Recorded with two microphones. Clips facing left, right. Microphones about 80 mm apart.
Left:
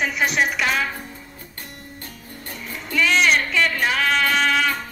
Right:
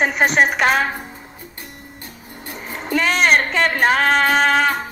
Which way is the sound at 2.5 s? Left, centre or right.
Right.